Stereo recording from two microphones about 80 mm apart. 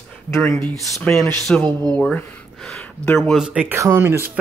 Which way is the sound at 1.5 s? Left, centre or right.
Centre.